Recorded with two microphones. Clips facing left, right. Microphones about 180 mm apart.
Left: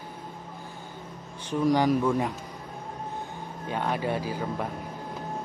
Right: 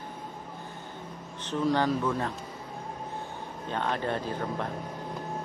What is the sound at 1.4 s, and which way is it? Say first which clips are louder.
Speech: left 3 dB; 10° left (ahead or behind).